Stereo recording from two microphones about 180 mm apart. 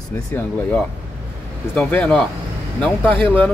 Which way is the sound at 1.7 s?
5° left (ahead or behind).